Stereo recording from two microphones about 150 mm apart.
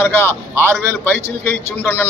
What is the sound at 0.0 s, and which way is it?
Speech, 15° left (ahead or behind).